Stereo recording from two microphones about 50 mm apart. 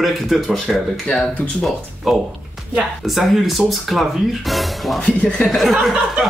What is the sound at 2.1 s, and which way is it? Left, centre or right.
A man's voice, centre.